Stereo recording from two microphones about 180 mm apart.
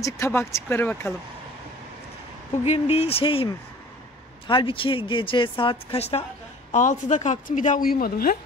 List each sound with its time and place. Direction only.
0.0 s speech: 15° left (ahead or behind)
2.5 s a woman's voice: 40° left (ahead or behind); by 8.4 s 55° left (ahead or behind)